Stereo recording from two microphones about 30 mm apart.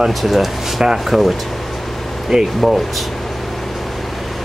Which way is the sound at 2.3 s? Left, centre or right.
Right.